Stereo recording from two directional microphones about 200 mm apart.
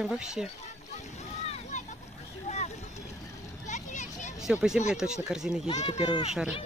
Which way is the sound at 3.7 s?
35° left (ahead or behind).